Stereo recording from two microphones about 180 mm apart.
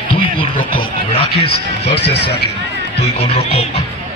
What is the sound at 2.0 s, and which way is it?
Speech, 65° left (ahead or behind).